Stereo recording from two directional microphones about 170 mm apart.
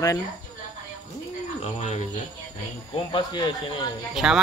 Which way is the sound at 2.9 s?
25° left (ahead or behind).